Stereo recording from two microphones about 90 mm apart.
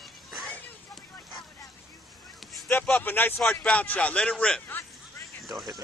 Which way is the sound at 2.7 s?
20° left (ahead or behind).